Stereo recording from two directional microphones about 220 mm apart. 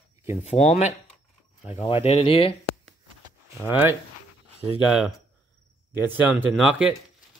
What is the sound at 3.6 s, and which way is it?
Speech, 10° right (ahead or behind).